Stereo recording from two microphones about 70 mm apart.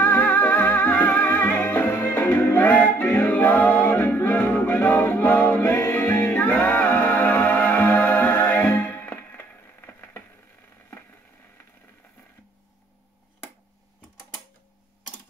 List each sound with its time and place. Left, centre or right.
0.0 s music: left